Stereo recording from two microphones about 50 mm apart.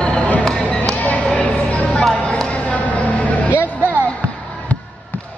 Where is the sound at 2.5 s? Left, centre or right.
Left.